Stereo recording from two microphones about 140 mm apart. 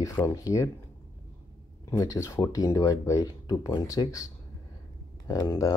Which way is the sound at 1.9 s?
20° left (ahead or behind).